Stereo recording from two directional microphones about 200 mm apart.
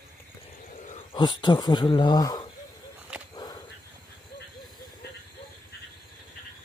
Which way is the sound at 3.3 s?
20° left (ahead or behind).